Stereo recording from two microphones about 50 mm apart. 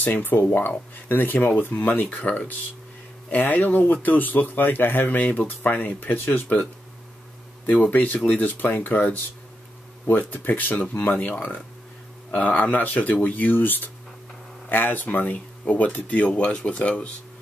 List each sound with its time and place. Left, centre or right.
0.0 s speech: left
7.6 s speech: left